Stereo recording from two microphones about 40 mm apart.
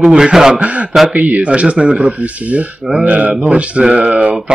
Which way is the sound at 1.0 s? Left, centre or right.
Right.